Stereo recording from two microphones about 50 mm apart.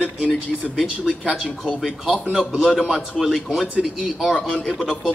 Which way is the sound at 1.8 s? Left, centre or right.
Right.